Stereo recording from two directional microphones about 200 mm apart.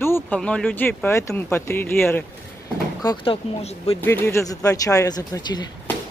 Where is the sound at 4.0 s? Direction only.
10° left (ahead or behind).